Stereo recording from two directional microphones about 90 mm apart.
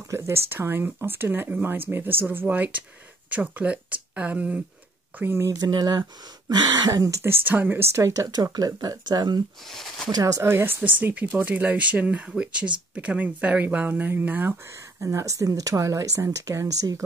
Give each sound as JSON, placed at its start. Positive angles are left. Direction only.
{"t": 0.1, "sound": "speech", "side_deg": -25}
{"t": 5.5, "sound": "speech", "side_deg": -45}
{"t": 9.7, "sound": "speech", "side_deg": 0}
{"t": 10.1, "sound": "speech", "side_deg": -35}
{"t": 15.0, "sound": "speech", "side_deg": -35}